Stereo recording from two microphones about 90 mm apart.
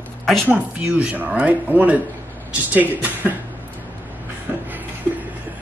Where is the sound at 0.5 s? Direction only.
15° right (ahead or behind).